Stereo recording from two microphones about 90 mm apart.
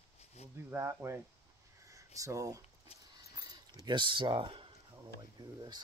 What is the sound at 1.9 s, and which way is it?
Speech, 40° right (ahead or behind).